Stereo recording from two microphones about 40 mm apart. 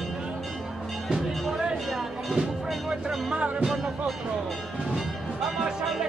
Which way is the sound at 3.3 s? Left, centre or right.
Right.